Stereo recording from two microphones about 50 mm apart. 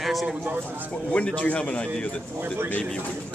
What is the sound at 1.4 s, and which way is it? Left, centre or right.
Speech, left.